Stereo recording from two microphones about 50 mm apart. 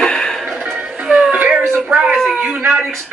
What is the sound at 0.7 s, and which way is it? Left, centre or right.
Music, centre.